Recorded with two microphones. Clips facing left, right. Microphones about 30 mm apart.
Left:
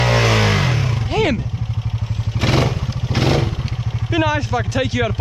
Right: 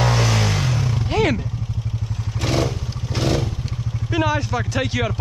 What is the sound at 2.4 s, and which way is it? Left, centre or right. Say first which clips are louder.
Vehicle: left 4 dB; left.